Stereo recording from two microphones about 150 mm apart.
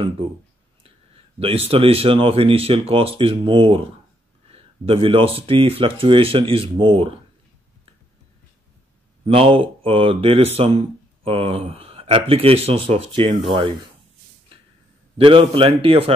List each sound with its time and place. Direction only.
1.4 s speech: 40° right (ahead or behind)
9.2 s speech: 35° right (ahead or behind)
15.1 s speech: 35° right (ahead or behind)